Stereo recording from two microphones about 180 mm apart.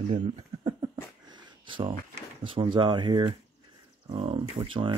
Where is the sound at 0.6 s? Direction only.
25° right (ahead or behind).